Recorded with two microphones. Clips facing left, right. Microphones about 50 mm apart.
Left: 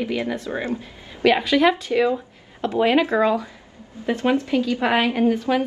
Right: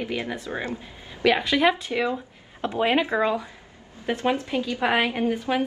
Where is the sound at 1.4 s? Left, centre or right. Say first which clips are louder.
Left 3 dB; centre.